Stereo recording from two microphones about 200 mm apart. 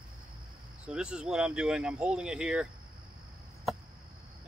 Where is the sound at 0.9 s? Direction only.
5° right (ahead or behind).